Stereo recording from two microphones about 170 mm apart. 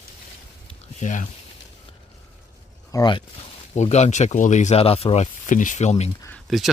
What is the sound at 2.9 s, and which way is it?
Speech, 25° left (ahead or behind).